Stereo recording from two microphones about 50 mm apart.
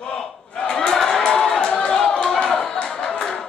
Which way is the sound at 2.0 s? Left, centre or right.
Centre.